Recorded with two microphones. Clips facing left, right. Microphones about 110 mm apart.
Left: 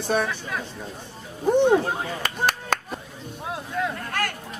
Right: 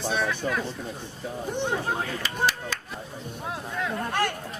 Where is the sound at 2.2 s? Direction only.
55° left (ahead or behind).